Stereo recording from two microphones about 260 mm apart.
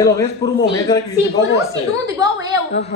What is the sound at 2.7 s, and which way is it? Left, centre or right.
Speech, left.